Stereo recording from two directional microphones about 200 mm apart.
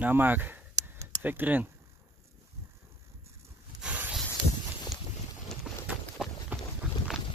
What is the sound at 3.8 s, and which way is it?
Snake, 5° right (ahead or behind).